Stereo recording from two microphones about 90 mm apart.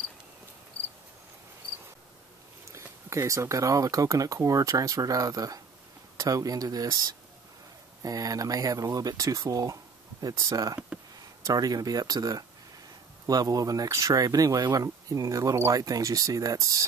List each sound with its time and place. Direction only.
2.7 s speech: 35° right (ahead or behind)